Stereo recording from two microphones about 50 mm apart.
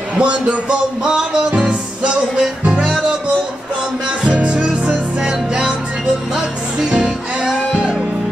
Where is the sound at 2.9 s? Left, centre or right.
Centre.